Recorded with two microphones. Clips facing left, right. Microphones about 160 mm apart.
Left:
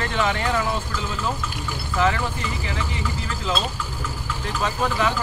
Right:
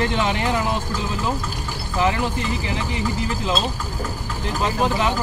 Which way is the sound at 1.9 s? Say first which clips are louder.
Right 1 dB; 15° right (ahead or behind).